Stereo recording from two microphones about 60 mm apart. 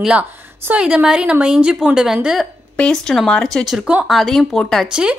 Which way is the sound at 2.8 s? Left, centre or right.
Centre.